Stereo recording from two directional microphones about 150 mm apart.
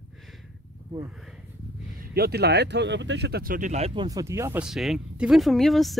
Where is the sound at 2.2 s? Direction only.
90° right; by 3.9 s 50° right (ahead or behind).